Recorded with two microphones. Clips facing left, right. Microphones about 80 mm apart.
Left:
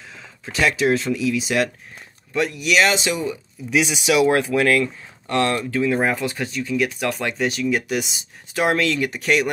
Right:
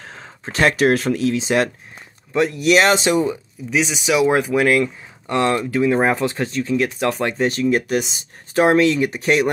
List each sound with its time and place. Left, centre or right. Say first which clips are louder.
0.0 s a sound: right 4 dB; right
0.8 s speech: right 3 dB; right
1.3 s speech: right 3 dB; right
3.7 s speech: even; centre; by 8.6 s right
8.6 s speech: right 5 dB; right